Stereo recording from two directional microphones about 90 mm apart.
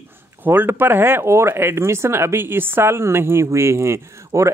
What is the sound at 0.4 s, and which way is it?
Speech, 25° right (ahead or behind).